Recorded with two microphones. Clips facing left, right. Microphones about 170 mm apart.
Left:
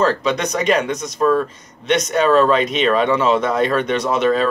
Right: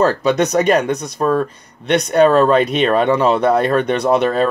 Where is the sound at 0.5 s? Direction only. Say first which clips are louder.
Right 4 dB; 40° right (ahead or behind).